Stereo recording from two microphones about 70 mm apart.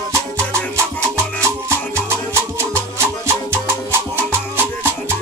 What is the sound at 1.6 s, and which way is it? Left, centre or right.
Music, right.